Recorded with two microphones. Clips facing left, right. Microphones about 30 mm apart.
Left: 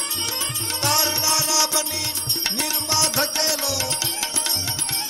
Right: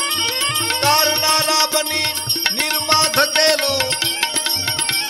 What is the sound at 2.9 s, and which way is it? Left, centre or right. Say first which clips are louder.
Music: right 7 dB; right.